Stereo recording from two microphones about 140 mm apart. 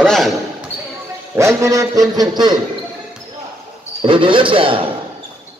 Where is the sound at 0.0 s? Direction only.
5° left (ahead or behind).